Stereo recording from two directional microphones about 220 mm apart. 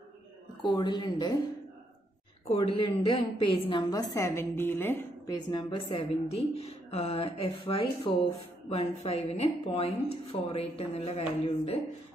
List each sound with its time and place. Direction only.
0.7 s a woman's voice: 20° left (ahead or behind)
2.5 s a woman's voice: 20° left (ahead or behind)